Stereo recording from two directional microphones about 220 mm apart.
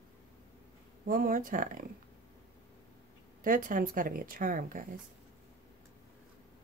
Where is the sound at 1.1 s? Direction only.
40° right (ahead or behind).